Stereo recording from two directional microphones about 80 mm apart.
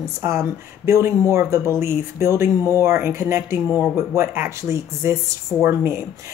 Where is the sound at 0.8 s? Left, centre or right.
Right.